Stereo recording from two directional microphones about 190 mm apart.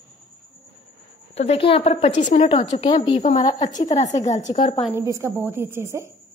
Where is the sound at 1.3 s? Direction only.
35° left (ahead or behind).